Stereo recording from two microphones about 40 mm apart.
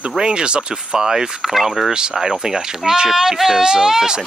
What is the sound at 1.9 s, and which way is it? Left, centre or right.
Speech, centre.